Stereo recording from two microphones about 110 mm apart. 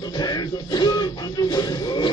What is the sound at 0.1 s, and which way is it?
Music, 40° left (ahead or behind).